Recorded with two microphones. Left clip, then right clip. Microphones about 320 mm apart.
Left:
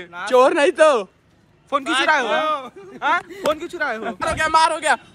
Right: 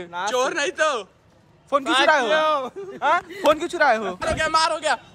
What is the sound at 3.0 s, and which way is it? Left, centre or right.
Speech, centre.